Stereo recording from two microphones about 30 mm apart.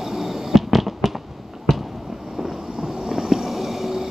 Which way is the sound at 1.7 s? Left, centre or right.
Left.